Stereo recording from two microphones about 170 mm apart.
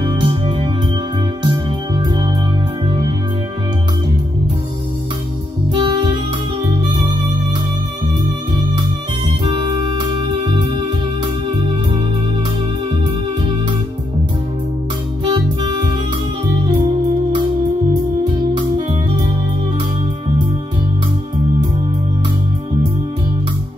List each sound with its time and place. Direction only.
0.0 s music: 30° right (ahead or behind)
5.7 s music: 30° right (ahead or behind)
9.4 s music: 25° right (ahead or behind)
15.2 s music: 30° right (ahead or behind)